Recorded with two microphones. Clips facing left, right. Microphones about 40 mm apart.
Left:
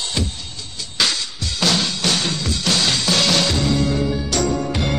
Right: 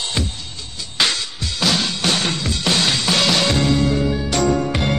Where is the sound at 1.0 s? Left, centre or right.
Centre.